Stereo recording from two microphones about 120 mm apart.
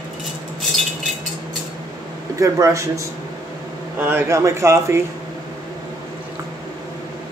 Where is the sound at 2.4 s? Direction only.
25° right (ahead or behind).